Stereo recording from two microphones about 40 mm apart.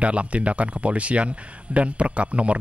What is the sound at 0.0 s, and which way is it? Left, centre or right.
Speech, right.